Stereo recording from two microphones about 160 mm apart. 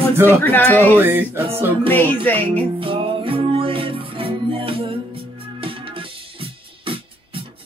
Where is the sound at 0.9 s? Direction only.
10° right (ahead or behind).